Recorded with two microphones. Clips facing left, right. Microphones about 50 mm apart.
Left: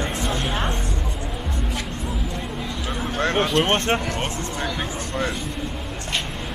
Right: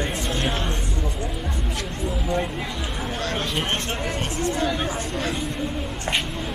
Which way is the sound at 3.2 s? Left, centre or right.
Left.